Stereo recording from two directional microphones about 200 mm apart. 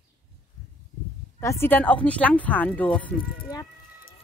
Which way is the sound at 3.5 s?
20° left (ahead or behind).